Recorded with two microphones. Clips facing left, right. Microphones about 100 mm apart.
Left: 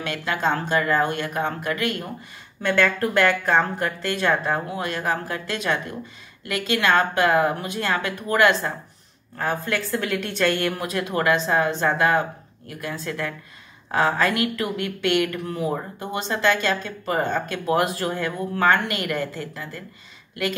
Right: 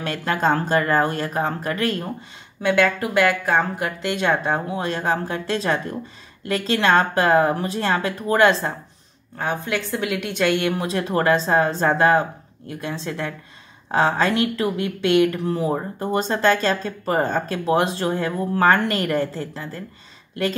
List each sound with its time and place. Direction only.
0.0 s speech: 40° right (ahead or behind)
2.6 s speech: 15° right (ahead or behind); by 19.8 s 30° right (ahead or behind)